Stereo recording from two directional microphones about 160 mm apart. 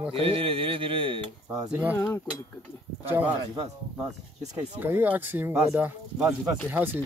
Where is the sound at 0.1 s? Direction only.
35° right (ahead or behind).